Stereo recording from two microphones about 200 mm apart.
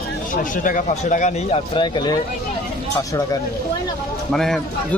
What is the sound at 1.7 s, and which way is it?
Speech, 20° left (ahead or behind).